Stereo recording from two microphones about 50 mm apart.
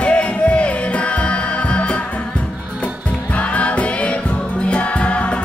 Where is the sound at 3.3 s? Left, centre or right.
Left.